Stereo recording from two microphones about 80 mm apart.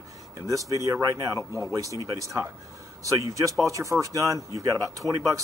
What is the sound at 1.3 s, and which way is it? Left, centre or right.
Speech, left.